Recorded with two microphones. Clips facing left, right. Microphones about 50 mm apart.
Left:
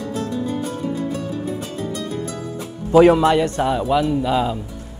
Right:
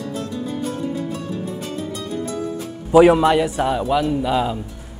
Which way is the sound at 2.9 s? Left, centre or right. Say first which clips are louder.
Even; centre.